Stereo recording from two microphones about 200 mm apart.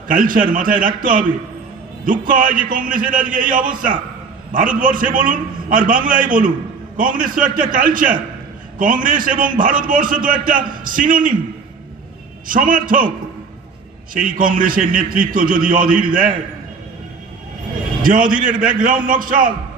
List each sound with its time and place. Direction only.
0.1 s a man's voice: 45° right (ahead or behind)
12.4 s a man's voice: 40° right (ahead or behind)
14.4 s a man's voice: 45° right (ahead or behind)
18.0 s a man's voice: 45° right (ahead or behind)